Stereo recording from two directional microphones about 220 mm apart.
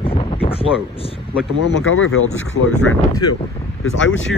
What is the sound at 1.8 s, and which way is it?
Speech, 60° left (ahead or behind).